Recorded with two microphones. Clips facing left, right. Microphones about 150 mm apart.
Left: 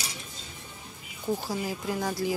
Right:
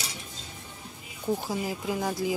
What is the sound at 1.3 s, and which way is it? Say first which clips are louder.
Speech: right 1 dB; 15° right (ahead or behind).